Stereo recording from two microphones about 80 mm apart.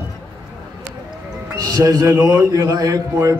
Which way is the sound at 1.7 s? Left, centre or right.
Right.